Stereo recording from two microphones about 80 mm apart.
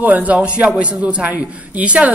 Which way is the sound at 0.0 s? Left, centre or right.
Centre.